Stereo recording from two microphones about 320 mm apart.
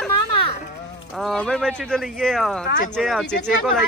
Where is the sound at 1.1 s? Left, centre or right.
Centre.